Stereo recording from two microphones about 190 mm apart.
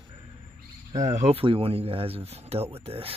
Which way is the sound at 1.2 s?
30° right (ahead or behind).